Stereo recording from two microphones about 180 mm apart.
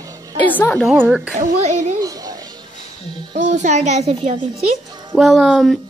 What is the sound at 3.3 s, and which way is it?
A child's voice, 40° right (ahead or behind).